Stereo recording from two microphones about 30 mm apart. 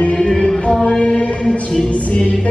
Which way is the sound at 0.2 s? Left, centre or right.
Left.